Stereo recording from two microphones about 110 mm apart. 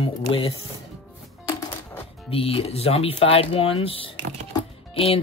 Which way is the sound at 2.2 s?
60° left (ahead or behind).